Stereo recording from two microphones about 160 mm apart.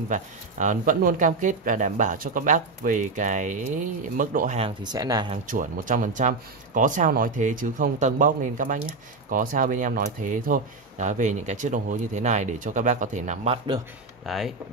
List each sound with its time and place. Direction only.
0.1 s speech: 50° right (ahead or behind)
4.6 s speech: 35° right (ahead or behind)
4.9 s speech: 25° right (ahead or behind)
5.5 s speech: 55° right (ahead or behind)
14.2 s speech: centre (ahead or behind)